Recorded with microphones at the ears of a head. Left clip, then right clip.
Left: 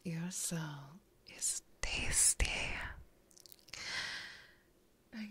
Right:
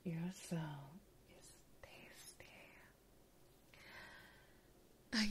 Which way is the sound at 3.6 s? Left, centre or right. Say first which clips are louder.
Left 16 dB; left.